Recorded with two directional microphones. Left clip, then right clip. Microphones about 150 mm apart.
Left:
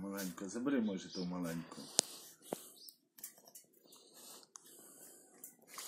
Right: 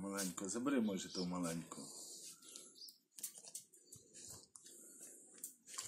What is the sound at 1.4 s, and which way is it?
Speech, 30° left (ahead or behind).